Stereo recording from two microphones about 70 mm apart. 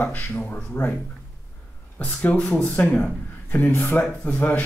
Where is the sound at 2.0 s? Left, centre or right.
Left.